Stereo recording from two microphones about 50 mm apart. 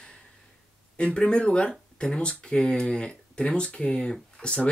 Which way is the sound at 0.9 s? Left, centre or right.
Left.